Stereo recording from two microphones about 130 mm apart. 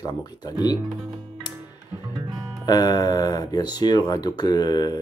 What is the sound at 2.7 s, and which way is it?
Speech, 30° left (ahead or behind).